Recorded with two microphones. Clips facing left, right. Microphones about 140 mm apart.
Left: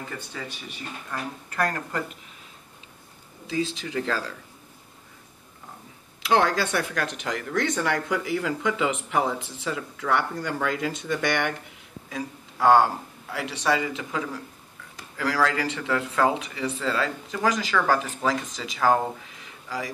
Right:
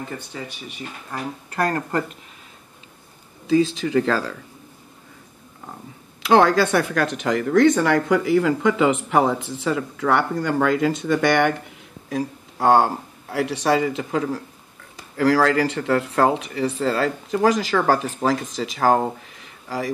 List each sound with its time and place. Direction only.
0.3 s speech: 25° right (ahead or behind); by 2.0 s 50° right (ahead or behind)
3.8 s speech: 65° right (ahead or behind)
6.2 s speech: 75° right (ahead or behind)
6.7 s speech: 65° right (ahead or behind); by 11.4 s 80° right
12.2 s speech: 35° right (ahead or behind)